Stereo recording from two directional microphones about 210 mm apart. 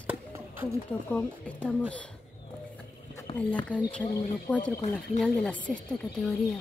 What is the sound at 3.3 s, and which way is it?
Speech, 30° left (ahead or behind).